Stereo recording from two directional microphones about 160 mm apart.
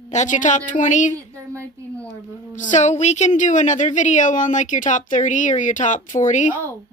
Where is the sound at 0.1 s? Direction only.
50° left (ahead or behind).